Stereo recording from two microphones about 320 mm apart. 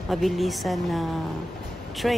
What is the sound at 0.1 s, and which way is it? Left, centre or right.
Speech, centre.